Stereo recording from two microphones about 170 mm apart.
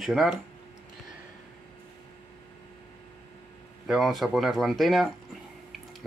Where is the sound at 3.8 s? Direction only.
Centre (ahead or behind).